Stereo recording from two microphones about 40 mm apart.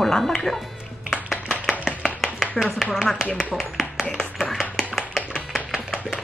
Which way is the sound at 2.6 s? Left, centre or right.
Left.